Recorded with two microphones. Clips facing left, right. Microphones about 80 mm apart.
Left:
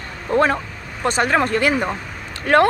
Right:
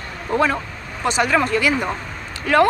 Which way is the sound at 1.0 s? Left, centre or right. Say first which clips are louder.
Even; left.